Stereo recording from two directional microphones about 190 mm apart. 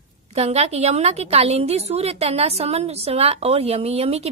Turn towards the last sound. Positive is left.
turn(degrees=-35)  # may be behind; listen again after turning